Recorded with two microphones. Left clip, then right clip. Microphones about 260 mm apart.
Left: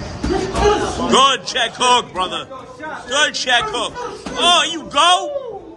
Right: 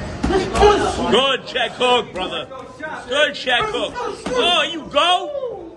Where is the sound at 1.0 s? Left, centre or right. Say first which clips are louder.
Left 6 dB; centre.